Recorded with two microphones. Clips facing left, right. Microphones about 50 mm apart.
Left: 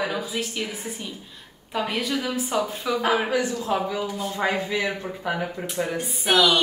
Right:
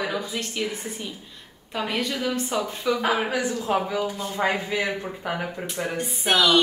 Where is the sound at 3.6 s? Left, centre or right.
Right.